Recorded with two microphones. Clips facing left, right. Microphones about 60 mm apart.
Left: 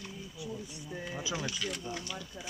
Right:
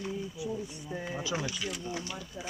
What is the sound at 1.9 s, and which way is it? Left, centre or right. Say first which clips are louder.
Speech: right 2 dB; centre.